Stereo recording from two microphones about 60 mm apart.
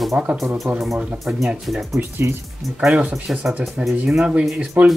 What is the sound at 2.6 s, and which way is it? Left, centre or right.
Speech, centre.